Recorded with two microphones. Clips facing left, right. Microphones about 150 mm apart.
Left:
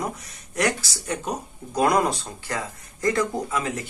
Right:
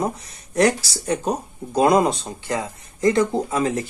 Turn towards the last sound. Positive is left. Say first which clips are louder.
# right 5 dB
turn(degrees=-30)  # may be behind; listen again after turning